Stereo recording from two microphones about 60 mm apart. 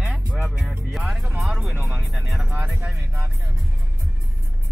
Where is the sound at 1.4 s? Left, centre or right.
Centre.